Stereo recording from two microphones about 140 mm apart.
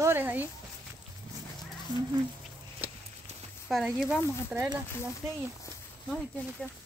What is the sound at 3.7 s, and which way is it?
Speech, centre (ahead or behind).